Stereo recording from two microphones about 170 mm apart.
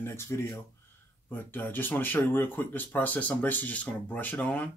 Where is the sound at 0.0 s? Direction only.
15° left (ahead or behind).